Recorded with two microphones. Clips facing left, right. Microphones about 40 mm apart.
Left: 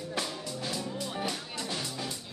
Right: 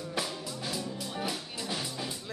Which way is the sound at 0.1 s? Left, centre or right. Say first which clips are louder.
Even; centre.